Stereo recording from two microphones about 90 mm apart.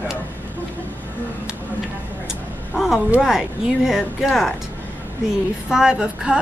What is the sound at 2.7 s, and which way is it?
Speech, centre (ahead or behind).